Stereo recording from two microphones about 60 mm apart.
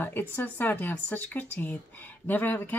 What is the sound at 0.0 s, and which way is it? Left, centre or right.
Speech, left.